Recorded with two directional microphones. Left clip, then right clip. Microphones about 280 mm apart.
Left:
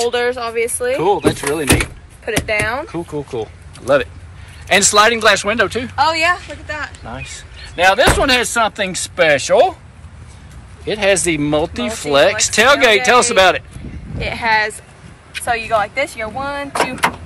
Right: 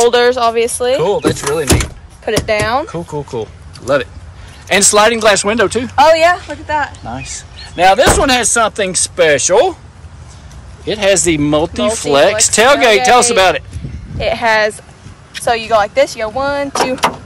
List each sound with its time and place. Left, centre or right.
0.1 s speech: right
1.0 s speech: centre
2.2 s speech: right
3.3 s speech: centre
5.9 s speech: right
7.1 s speech: centre
10.9 s speech: centre
14.1 s speech: right